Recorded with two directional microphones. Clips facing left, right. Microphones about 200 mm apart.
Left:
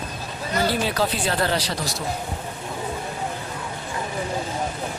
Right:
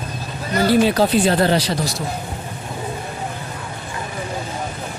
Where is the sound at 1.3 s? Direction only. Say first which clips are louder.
Right 7 dB; 25° right (ahead or behind).